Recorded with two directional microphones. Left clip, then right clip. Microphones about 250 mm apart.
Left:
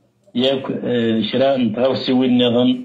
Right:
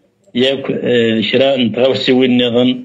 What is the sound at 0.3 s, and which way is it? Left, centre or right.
A man's voice, right.